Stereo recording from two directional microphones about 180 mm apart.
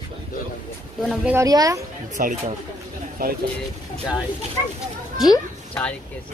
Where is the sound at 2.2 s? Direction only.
45° right (ahead or behind).